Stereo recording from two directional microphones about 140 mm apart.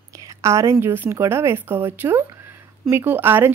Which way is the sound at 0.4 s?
20° right (ahead or behind).